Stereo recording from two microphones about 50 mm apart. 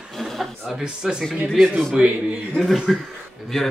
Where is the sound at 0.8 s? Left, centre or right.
Centre.